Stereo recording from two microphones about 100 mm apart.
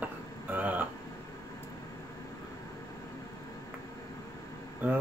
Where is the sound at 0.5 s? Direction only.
15° right (ahead or behind).